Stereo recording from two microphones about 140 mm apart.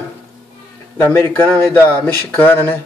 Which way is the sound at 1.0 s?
15° left (ahead or behind).